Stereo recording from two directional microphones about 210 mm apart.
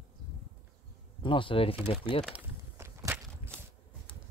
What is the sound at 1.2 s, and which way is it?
Speech, 25° left (ahead or behind).